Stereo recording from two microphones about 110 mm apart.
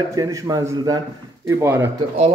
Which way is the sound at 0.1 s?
30° right (ahead or behind).